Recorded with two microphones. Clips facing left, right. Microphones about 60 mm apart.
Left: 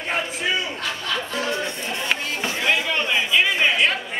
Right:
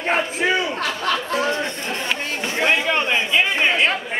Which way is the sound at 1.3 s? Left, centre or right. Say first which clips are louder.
Right 4 dB; right.